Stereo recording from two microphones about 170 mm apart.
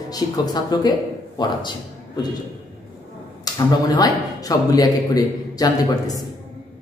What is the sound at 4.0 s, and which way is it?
A man's voice, 20° left (ahead or behind).